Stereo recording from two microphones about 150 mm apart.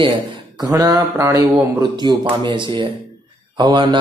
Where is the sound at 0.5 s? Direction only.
25° right (ahead or behind).